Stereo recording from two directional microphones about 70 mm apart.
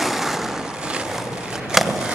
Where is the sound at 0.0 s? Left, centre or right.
Centre.